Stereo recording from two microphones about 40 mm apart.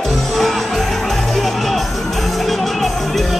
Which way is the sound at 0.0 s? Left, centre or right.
Centre.